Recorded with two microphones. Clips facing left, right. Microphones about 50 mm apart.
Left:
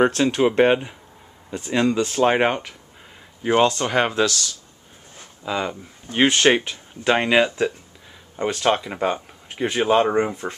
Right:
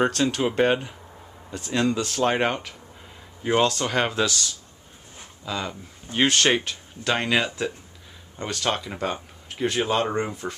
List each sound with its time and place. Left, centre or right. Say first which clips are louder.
0.0 s speech: left 5 dB; centre
5.4 s speech: left 5 dB; centre